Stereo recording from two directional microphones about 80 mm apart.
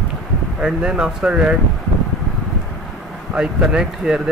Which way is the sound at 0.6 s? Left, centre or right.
Centre.